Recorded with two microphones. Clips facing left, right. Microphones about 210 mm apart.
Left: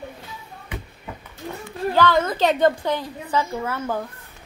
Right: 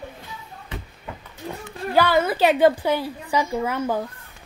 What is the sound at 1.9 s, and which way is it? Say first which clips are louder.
A woman's voice: right 1 dB; 10° right (ahead or behind).